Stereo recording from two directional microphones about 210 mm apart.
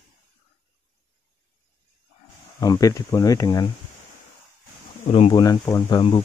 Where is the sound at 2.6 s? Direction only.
15° left (ahead or behind).